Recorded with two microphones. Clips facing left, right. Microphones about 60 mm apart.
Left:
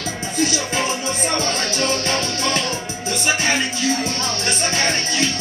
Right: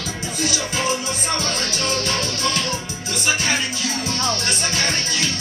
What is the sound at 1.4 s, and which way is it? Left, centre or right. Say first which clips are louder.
Music: left 3 dB; left.